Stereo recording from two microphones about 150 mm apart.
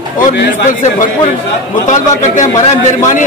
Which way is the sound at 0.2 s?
60° left (ahead or behind).